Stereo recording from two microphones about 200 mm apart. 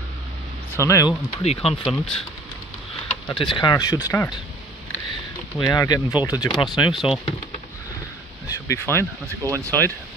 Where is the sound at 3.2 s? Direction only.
25° left (ahead or behind).